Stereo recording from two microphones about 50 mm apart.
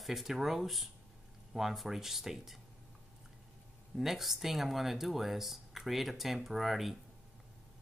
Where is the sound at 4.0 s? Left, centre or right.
Centre.